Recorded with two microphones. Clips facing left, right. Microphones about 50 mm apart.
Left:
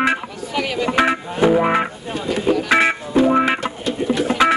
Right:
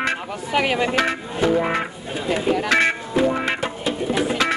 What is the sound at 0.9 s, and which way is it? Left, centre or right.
Music, centre.